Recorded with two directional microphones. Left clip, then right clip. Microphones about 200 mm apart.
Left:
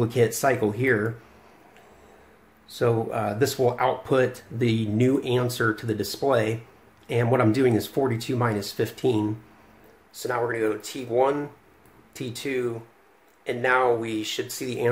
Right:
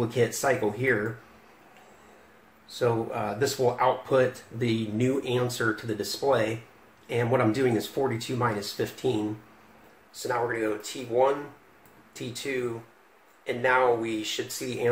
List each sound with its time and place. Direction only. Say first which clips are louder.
0.0 s speech: left 4 dB; 55° left (ahead or behind)
2.7 s speech: left 3 dB; 55° left (ahead or behind)
10.1 s speech: left 2 dB; 55° left (ahead or behind)